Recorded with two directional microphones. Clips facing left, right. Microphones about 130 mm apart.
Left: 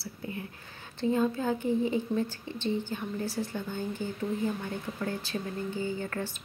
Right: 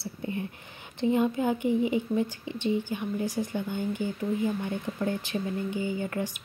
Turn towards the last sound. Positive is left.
turn(degrees=-15)  # may be behind; listen again after turning